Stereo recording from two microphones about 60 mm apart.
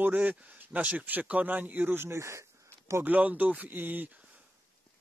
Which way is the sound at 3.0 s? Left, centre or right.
Right.